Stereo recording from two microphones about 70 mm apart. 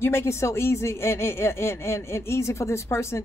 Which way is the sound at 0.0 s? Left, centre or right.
Left.